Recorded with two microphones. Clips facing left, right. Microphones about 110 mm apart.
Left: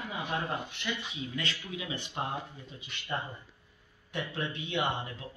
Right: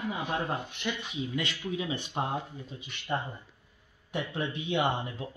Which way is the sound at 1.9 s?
20° right (ahead or behind).